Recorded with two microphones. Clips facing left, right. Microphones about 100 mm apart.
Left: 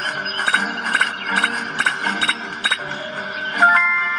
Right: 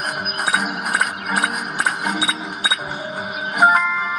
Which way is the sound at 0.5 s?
10° right (ahead or behind).